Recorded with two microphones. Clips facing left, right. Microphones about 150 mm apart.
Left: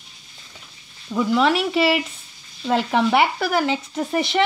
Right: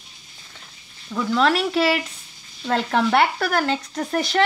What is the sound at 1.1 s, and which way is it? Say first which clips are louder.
Speech: left 1 dB; 10° left (ahead or behind).